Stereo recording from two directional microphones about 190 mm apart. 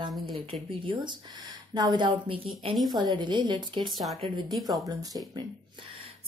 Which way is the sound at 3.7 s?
Centre (ahead or behind).